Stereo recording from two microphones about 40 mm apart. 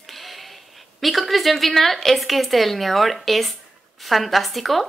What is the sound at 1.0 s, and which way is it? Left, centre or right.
A woman's voice, centre.